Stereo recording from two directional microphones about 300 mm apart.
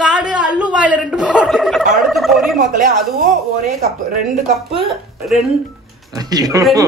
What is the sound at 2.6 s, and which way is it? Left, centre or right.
Speech, right.